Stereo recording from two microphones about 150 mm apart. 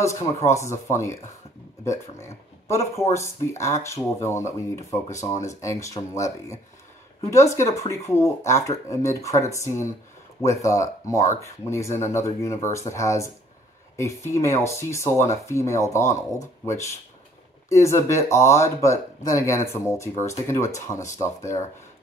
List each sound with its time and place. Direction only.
0.0 s speech: 20° left (ahead or behind)